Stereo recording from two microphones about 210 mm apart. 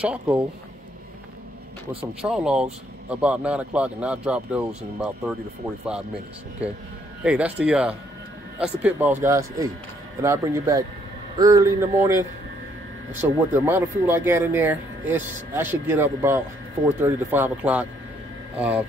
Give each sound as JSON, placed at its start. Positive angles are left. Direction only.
{"t": 0.0, "sound": "speech", "side_deg": -5}
{"t": 2.2, "sound": "speech", "side_deg": -5}
{"t": 7.2, "sound": "speech", "side_deg": -5}